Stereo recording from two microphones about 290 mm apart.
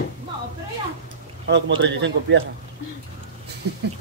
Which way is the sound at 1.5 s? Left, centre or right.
Right.